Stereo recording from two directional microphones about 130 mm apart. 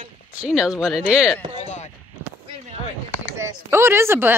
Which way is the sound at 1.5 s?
55° left (ahead or behind).